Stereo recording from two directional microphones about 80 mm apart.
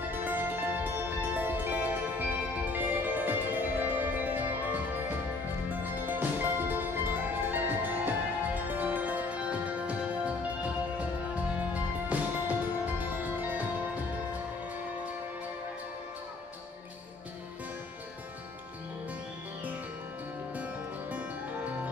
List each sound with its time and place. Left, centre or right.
0.1 s music: right
5.7 s music: right
20.5 s music: centre